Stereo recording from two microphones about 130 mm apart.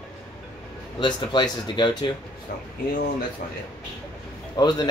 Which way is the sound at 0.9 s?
35° left (ahead or behind).